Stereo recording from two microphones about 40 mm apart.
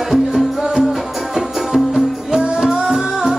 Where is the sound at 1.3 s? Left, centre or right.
Centre.